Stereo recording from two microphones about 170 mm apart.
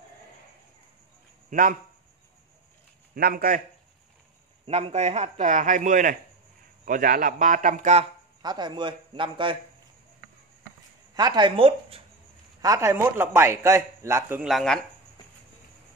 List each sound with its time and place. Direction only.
1.5 s speech: 55° right (ahead or behind)
3.2 s speech: 60° right (ahead or behind)
4.6 s a man's voice: 40° right (ahead or behind)
8.4 s a man's voice: 25° right (ahead or behind)
11.1 s a man's voice: 25° right (ahead or behind)
12.6 s a man's voice: 15° right (ahead or behind)
14.4 s speech: centre (ahead or behind)